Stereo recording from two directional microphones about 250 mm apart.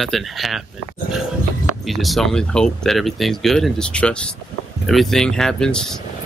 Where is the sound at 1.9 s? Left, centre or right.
Centre.